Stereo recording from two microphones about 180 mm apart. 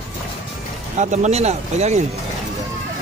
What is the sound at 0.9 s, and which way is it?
Speech, 40° right (ahead or behind).